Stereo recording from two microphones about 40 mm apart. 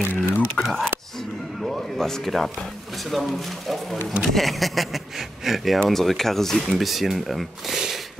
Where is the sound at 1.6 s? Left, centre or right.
Centre.